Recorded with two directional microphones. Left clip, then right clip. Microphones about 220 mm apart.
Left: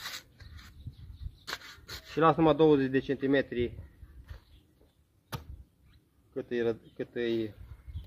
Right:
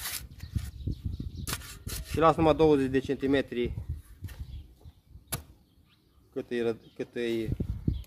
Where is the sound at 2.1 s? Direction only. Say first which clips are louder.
Right 1 dB; 5° left (ahead or behind).